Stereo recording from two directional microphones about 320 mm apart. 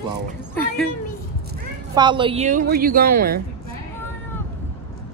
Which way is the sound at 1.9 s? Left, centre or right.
Centre.